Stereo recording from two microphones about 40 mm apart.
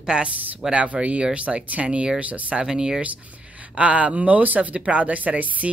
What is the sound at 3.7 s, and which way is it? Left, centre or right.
Speech, right.